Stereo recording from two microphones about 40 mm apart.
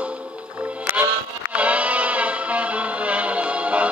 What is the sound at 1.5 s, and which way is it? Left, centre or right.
Music, right.